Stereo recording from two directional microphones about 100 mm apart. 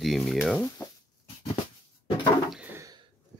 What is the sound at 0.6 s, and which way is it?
Speech, 30° left (ahead or behind).